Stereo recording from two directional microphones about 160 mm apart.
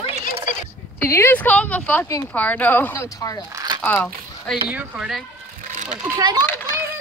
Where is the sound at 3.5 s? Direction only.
25° right (ahead or behind).